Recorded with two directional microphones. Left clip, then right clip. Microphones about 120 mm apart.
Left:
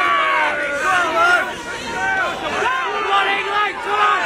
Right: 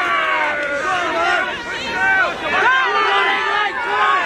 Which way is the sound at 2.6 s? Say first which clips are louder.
Right 6 dB; 30° right (ahead or behind).